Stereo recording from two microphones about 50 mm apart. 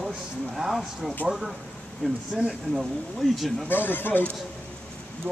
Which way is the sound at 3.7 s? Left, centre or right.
Left.